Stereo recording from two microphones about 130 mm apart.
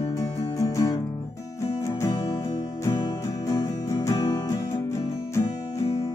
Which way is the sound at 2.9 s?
30° left (ahead or behind).